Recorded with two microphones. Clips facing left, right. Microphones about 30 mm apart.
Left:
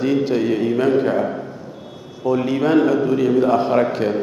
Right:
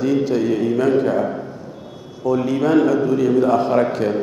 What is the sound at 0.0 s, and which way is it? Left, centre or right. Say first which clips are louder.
A man's voice: even; left.